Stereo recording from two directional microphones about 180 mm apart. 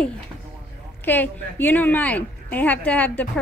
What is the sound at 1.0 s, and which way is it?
A woman's voice, 10° left (ahead or behind).